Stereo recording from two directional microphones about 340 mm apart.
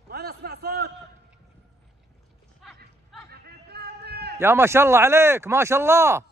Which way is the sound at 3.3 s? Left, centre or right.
Right.